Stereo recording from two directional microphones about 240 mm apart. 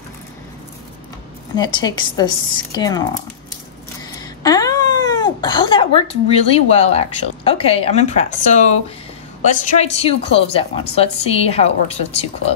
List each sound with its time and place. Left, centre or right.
1.5 s speech: centre
4.1 s a woman's voice: centre